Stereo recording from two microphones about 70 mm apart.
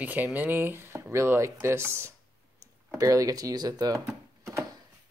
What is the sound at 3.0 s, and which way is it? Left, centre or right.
Speech, right.